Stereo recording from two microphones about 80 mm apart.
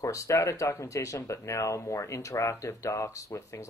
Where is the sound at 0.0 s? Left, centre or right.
Left.